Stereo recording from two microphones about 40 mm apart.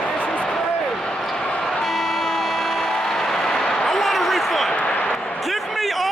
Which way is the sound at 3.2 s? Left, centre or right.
Centre.